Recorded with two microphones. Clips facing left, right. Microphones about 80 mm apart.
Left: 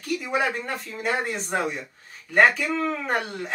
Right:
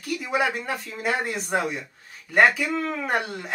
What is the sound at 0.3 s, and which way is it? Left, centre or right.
Speech, centre.